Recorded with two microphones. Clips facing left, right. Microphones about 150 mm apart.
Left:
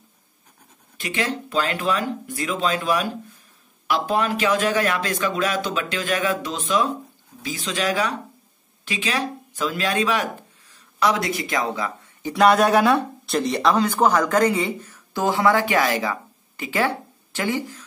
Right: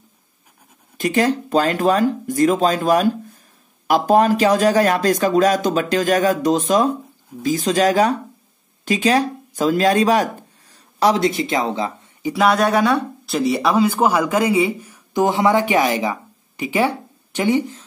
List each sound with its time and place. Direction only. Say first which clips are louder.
0.9 s speech: right 8 dB; 45° right (ahead or behind); by 11.9 s 25° right (ahead or behind)
12.4 s speech: even; centre (ahead or behind); by 17.8 s 20° right (ahead or behind)